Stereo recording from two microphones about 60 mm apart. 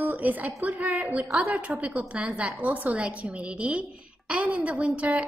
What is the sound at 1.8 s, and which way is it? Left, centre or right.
Speech, centre.